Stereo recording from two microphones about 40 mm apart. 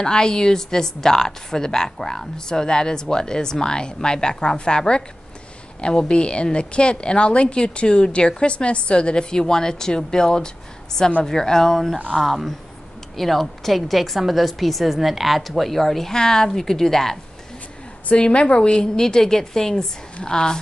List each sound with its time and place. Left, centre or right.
0.0 s a woman's voice: centre
13.1 s a woman's voice: centre
18.1 s a woman's voice: left